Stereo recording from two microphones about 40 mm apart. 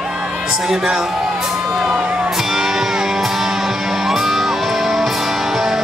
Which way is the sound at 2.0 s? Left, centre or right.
Right.